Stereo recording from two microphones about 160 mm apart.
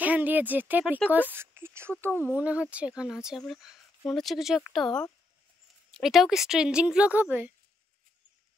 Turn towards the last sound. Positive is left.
turn(degrees=-10)  # may be behind; listen again after turning